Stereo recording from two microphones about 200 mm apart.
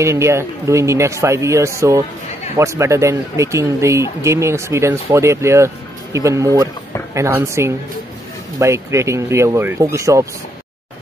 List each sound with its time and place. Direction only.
0.0 s speech: 15° right (ahead or behind)